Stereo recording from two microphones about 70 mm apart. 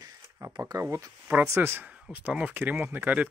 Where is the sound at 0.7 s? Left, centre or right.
Right.